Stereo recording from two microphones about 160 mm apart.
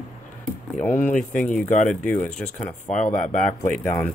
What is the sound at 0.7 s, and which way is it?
Speech, 10° left (ahead or behind).